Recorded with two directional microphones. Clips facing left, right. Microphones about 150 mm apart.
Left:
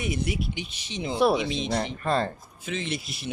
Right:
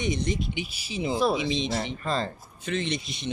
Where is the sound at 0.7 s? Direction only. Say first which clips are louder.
Left 1 dB; 5° right (ahead or behind).